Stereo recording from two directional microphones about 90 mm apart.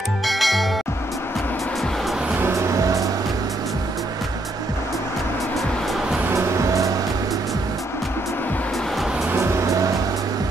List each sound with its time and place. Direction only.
0.3 s music: centre (ahead or behind)
2.4 s music: 40° right (ahead or behind)
6.3 s music: 35° right (ahead or behind)
9.3 s music: 35° right (ahead or behind)